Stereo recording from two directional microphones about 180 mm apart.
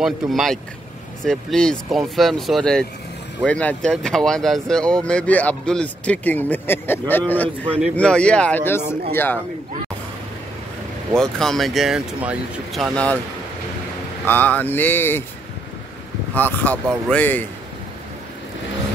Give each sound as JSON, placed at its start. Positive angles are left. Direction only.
{"t": 0.0, "sound": "speech", "side_deg": 0}
{"t": 11.1, "sound": "speech", "side_deg": 0}
{"t": 12.9, "sound": "speech", "side_deg": 5}
{"t": 14.2, "sound": "speech", "side_deg": 10}
{"t": 16.3, "sound": "speech", "side_deg": 10}